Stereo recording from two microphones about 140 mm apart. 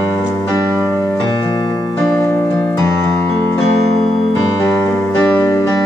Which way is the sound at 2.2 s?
15° left (ahead or behind).